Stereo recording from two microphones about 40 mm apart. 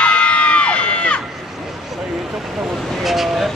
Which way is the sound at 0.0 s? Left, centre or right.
Left.